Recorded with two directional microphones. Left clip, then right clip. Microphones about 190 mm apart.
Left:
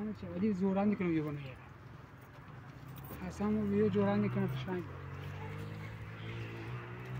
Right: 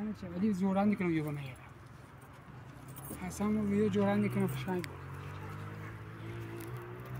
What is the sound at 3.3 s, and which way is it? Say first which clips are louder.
Speech: even; 30° right (ahead or behind).